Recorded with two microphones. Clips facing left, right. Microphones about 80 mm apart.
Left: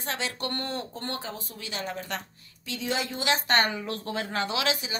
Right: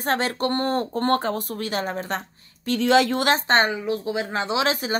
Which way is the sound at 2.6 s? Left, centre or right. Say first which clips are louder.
Right 12 dB; right.